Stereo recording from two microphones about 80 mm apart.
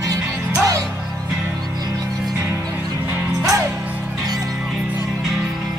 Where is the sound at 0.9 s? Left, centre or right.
Centre.